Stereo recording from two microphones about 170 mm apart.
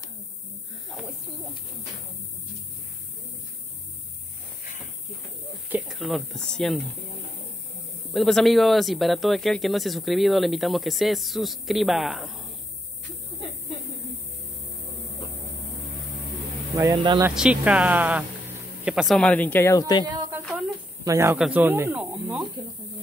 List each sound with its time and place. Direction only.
0.8 s snake: centre (ahead or behind)
5.7 s speech: centre (ahead or behind)
8.1 s speech: centre (ahead or behind)
16.9 s speech: 30° right (ahead or behind)
17.3 s speech: 5° right (ahead or behind); by 20.1 s 20° left (ahead or behind)
21.0 s speech: 15° right (ahead or behind)
22.6 s speech: 30° right (ahead or behind)